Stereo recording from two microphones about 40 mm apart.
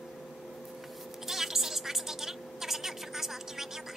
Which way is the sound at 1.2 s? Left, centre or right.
Centre.